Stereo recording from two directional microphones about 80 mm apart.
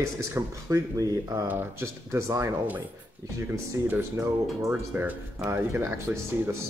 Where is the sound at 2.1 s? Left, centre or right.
Right.